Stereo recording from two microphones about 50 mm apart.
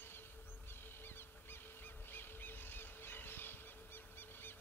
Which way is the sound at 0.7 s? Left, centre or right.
Left.